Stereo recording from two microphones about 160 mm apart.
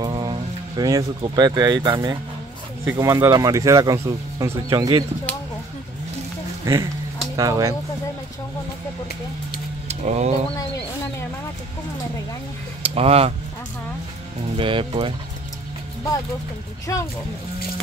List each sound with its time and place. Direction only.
0.0 s speech: 25° right (ahead or behind)
6.6 s speech: 20° right (ahead or behind)
9.8 s speech: 45° right (ahead or behind)
12.8 s speech: 40° right (ahead or behind)
14.6 s speech: 30° right (ahead or behind)
16.8 s speech: 20° left (ahead or behind)